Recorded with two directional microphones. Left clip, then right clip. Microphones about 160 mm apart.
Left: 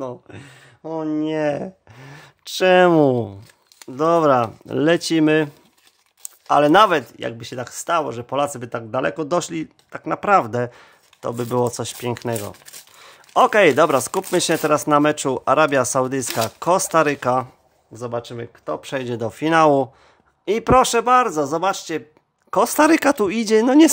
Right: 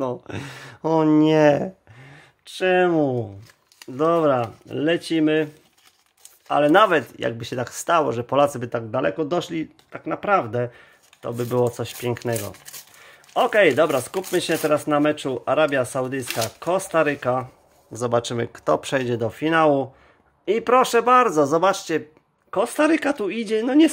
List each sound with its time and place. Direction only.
0.3 s speech: 30° right (ahead or behind)
2.0 s speech: 45° left (ahead or behind)
3.9 s speech: 30° left (ahead or behind)
6.9 s speech: 10° left (ahead or behind)
8.5 s speech: 10° left (ahead or behind); by 11.3 s 35° left (ahead or behind)
11.3 s speech: 25° left (ahead or behind)
13.0 s speech: 35° left (ahead or behind)
17.9 s speech: 5° right (ahead or behind)
19.0 s speech: 15° left (ahead or behind); by 19.9 s 35° left (ahead or behind)
20.4 s speech: 25° left (ahead or behind); by 22.0 s 5° left (ahead or behind)
22.5 s speech: 45° left (ahead or behind)